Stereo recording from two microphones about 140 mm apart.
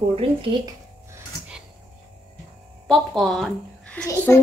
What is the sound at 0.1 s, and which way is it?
Speech, 40° right (ahead or behind).